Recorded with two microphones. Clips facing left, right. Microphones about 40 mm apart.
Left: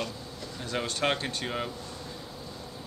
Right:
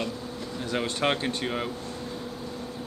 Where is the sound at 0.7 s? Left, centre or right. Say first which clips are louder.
Right 2 dB; centre.